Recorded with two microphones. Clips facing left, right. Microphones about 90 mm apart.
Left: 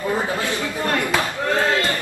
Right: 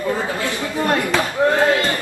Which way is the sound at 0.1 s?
20° left (ahead or behind).